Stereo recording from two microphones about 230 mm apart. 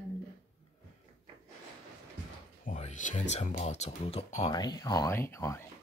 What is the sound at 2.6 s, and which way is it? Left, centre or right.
Speech, left.